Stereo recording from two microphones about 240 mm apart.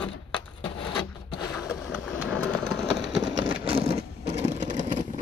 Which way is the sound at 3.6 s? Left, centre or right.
Right.